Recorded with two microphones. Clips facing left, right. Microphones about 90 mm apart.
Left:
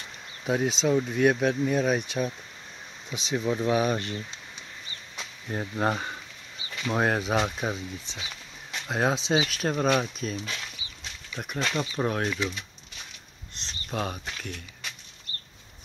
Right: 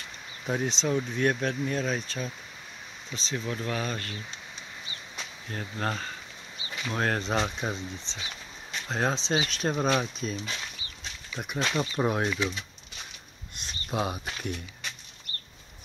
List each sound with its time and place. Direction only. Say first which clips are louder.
0.5 s speech: left 4 dB; 5° left (ahead or behind)
5.5 s speech: left 5 dB; 15° left (ahead or behind); by 12.5 s 10° right (ahead or behind)
13.6 s speech: right 1 dB; 10° right (ahead or behind)